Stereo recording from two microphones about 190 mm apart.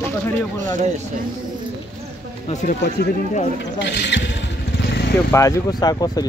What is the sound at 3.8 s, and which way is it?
Speech, 65° left (ahead or behind).